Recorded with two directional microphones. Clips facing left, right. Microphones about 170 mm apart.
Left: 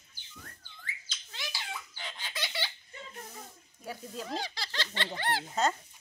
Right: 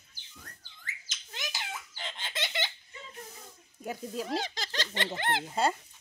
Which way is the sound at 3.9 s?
20° right (ahead or behind).